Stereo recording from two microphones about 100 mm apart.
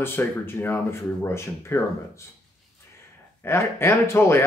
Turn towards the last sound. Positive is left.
turn(degrees=25)  # may be behind; listen again after turning